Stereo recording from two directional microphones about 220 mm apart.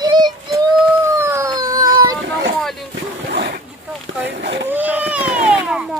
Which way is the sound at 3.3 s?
50° right (ahead or behind).